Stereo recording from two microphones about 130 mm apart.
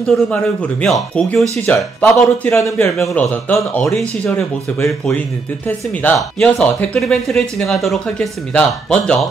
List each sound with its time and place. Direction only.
0.0 s speech: 5° left (ahead or behind)
1.7 s speech: 15° left (ahead or behind)
2.8 s speech: 10° left (ahead or behind)